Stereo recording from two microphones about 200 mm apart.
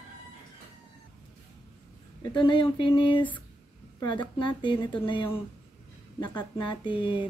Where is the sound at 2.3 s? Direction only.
25° left (ahead or behind).